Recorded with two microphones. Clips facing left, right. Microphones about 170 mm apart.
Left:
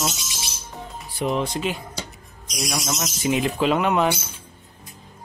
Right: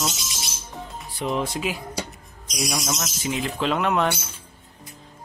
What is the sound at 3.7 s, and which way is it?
Music, 5° left (ahead or behind).